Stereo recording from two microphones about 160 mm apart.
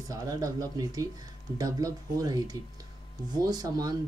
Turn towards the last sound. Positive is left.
turn(degrees=-20)  # may be behind; listen again after turning